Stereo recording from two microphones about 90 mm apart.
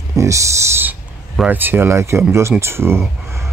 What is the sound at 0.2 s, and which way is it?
Speech, 35° right (ahead or behind).